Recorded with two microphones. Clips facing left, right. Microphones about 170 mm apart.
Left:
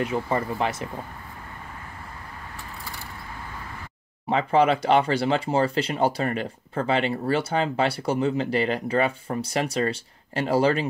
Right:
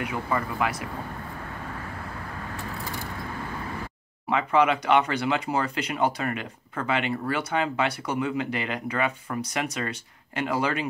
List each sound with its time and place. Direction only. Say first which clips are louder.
0.0 s speech: left 3 dB; 30° left (ahead or behind)
4.3 s speech: left 2 dB; 35° left (ahead or behind)